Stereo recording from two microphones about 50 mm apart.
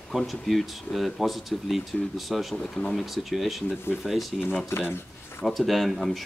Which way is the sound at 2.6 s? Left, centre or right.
Centre.